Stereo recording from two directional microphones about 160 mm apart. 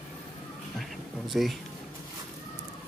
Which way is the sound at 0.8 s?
Centre (ahead or behind).